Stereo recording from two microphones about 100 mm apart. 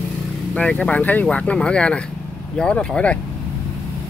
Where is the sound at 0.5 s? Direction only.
10° left (ahead or behind).